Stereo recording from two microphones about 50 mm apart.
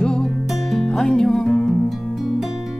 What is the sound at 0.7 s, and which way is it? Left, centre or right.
Music, centre.